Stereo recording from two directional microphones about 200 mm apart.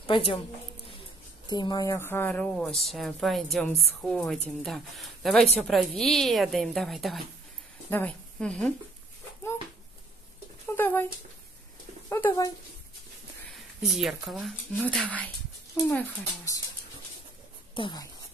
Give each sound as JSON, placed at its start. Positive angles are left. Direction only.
{"t": 0.0, "sound": "a woman's voice", "side_deg": 30}
{"t": 1.5, "sound": "a woman's voice", "side_deg": 20}
{"t": 10.7, "sound": "dog", "side_deg": 10}
{"t": 12.1, "sound": "a sound", "side_deg": 15}
{"t": 13.5, "sound": "speech", "side_deg": 0}
{"t": 17.7, "sound": "speech", "side_deg": 20}